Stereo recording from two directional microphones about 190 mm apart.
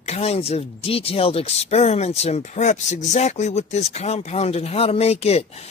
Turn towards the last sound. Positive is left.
turn(degrees=35)  # may be behind; listen again after turning